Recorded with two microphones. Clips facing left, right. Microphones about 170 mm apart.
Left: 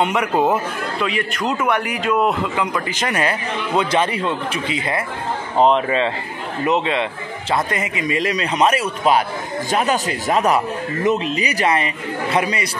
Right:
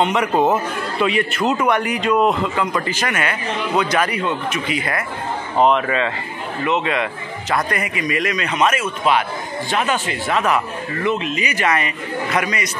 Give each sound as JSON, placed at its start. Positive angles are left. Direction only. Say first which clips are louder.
{"t": 0.0, "sound": "speech", "louder": "right 1 dB", "side_deg": 10}
{"t": 1.0, "sound": "a man's voice", "louder": "right 4 dB", "side_deg": -5}
{"t": 3.1, "sound": "a man's voice", "louder": "left 1 dB", "side_deg": 35}